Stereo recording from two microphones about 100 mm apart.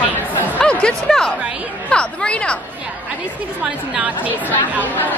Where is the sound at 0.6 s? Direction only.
10° left (ahead or behind).